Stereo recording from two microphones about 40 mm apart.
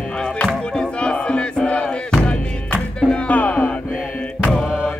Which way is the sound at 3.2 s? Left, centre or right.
Left.